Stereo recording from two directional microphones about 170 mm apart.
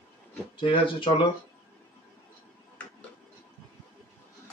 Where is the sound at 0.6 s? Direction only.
30° left (ahead or behind).